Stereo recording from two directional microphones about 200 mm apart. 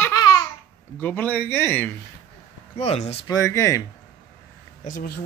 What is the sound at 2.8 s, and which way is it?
Speech, 30° left (ahead or behind).